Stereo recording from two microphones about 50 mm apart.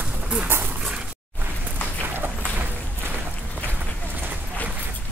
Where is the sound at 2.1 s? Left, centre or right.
Right.